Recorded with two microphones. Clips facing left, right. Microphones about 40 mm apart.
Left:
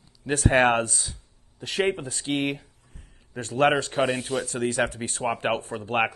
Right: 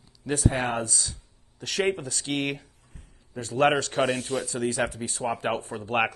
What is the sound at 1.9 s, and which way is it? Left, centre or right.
Speech, left.